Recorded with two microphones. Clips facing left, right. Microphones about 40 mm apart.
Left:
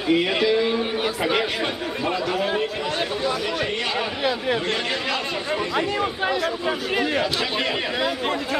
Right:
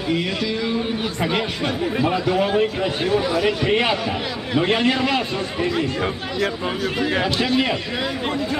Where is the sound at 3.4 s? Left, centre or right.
Right.